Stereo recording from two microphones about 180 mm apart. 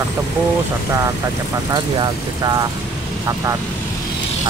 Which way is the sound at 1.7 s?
20° right (ahead or behind).